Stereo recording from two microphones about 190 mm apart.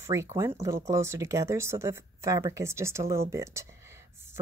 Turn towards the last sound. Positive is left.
turn(degrees=-15)  # may be behind; listen again after turning